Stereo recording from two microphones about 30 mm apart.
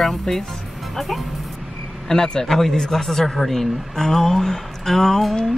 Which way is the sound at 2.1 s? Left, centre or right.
Left.